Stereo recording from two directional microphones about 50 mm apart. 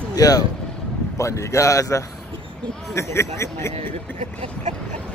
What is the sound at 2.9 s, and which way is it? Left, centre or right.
Speech, left.